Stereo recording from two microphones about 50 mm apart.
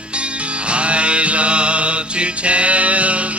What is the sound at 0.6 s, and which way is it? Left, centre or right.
Music, right.